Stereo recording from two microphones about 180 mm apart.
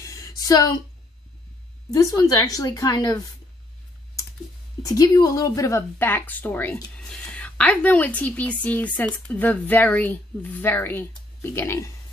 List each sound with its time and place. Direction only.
0.1 s a sound: 20° left (ahead or behind)
1.9 s a woman's voice: 20° left (ahead or behind)
4.8 s a woman's voice: 20° left (ahead or behind)